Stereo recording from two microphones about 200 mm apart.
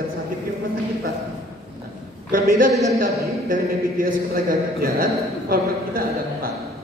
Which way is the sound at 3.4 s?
45° right (ahead or behind).